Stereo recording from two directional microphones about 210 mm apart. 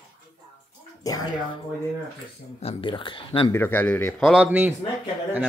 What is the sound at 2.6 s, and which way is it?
Speech, 25° left (ahead or behind).